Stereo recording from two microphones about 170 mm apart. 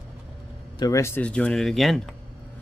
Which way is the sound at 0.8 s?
20° left (ahead or behind).